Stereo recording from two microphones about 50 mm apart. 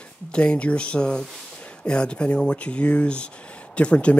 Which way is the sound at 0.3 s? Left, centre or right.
Centre.